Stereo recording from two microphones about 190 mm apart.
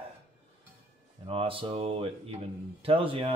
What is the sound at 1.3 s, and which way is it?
Speech, 30° right (ahead or behind).